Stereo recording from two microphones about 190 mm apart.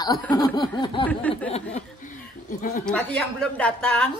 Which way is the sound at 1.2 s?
10° left (ahead or behind).